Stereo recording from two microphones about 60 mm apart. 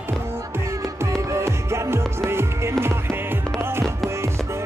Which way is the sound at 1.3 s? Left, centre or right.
Right.